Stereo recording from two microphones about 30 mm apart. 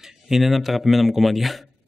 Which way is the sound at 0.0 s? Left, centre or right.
Centre.